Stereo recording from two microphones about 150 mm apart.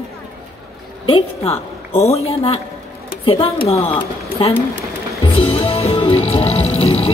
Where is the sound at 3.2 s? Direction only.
40° left (ahead or behind).